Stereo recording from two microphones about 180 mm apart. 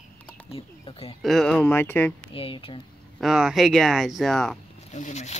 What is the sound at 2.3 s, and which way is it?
Speech, 30° left (ahead or behind).